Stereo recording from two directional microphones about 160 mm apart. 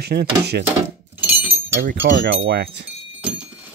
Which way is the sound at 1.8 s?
80° right.